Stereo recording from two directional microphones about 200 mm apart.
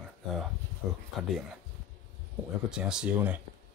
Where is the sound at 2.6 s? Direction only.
5° right (ahead or behind).